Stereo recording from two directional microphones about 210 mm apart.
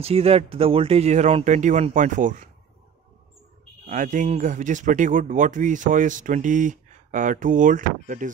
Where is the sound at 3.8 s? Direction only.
40° right (ahead or behind).